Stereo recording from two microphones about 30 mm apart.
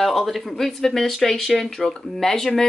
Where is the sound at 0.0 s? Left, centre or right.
Centre.